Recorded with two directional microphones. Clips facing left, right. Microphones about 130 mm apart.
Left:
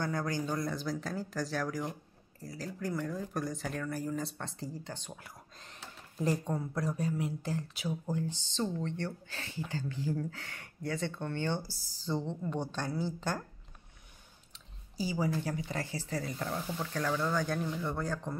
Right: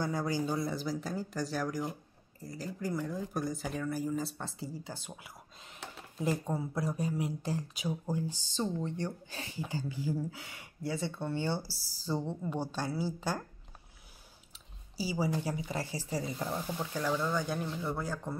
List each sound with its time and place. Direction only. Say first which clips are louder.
0.0 s speech: right 1 dB; 10° right (ahead or behind)
11.7 s speech: right 1 dB; 35° right (ahead or behind)
12.1 s speech: even; 10° right (ahead or behind)
15.0 s speech: even; 10° right (ahead or behind)